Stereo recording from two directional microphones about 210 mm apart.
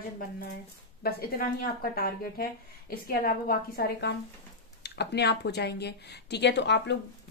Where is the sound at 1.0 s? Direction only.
45° left (ahead or behind).